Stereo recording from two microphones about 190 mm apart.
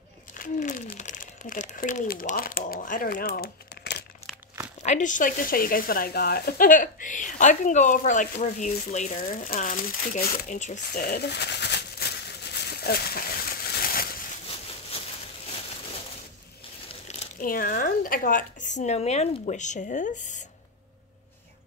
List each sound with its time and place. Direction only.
0.3 s speech: 40° left (ahead or behind); by 4.0 s 60° left (ahead or behind)
4.8 s speech: 40° left (ahead or behind)
10.9 s a sound: 55° left (ahead or behind)
17.1 s speech: 45° left (ahead or behind)
18.8 s speech: 35° left (ahead or behind)